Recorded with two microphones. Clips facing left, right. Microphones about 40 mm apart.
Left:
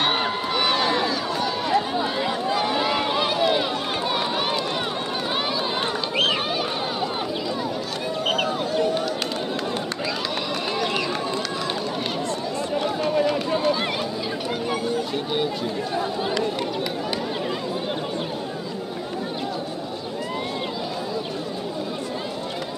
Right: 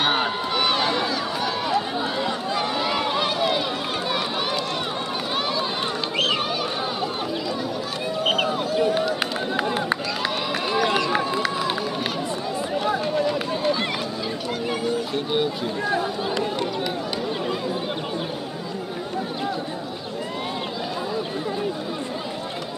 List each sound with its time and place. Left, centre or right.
0.0 s a sound: centre
2.2 s run: centre
6.1 s a sound: centre
8.2 s run: centre
10.7 s run: centre
13.6 s run: centre